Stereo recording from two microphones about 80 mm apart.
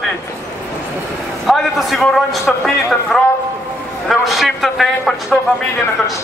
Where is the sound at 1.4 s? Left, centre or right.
Centre.